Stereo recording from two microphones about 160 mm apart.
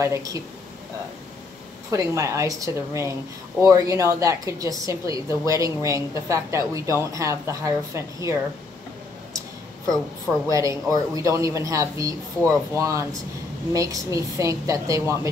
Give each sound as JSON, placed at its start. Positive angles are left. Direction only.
{"t": 0.0, "sound": "a woman's voice", "side_deg": -20}
{"t": 1.9, "sound": "a woman's voice", "side_deg": -20}
{"t": 10.5, "sound": "a woman's voice", "side_deg": -20}